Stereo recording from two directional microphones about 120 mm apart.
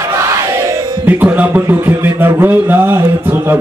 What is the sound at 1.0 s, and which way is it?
A man's voice, 15° right (ahead or behind).